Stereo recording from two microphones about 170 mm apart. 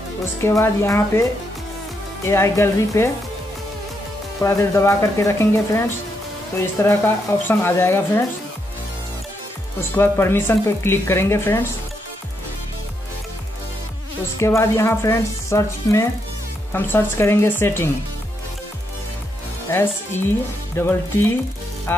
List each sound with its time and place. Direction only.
0.4 s speech: 15° left (ahead or behind)
2.2 s speech: 15° left (ahead or behind)
4.4 s speech: 15° left (ahead or behind)
9.8 s speech: 15° left (ahead or behind)
14.4 s speech: 15° left (ahead or behind)
19.7 s speech: 15° left (ahead or behind)
21.9 s music: 15° left (ahead or behind)